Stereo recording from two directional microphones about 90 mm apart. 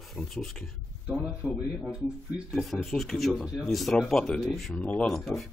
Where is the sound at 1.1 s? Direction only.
10° right (ahead or behind).